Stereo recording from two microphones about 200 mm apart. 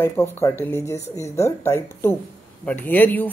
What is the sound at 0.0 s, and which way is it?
A woman's voice, 10° left (ahead or behind).